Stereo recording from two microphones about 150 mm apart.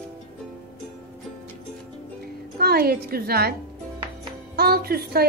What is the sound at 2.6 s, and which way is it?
Speech, 90° right.